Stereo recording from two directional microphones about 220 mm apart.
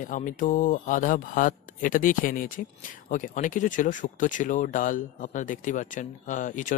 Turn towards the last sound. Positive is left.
turn(degrees=35)  # may be behind; listen again after turning